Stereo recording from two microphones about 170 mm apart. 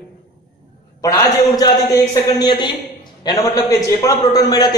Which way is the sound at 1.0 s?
20° left (ahead or behind).